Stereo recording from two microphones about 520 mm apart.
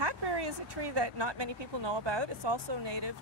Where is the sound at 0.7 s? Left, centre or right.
Right.